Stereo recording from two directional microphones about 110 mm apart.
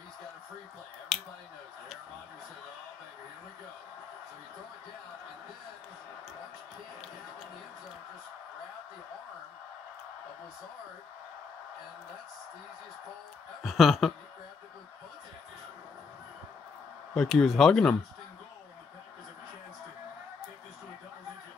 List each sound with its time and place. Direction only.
1.1 s a sound: 5° right (ahead or behind)
13.6 s speech: centre (ahead or behind)
17.1 s speech: centre (ahead or behind)